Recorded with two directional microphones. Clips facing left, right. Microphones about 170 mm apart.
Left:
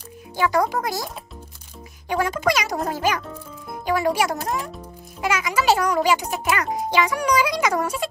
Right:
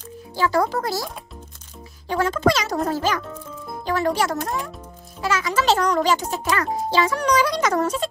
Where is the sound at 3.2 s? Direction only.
10° left (ahead or behind).